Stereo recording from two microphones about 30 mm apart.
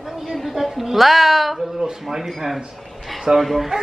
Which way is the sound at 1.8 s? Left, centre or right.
Centre.